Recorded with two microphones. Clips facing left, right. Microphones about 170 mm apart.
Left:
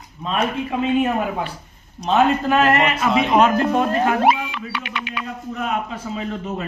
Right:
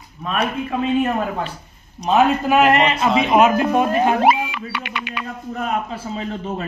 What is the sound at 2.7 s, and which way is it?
Speech, 25° right (ahead or behind).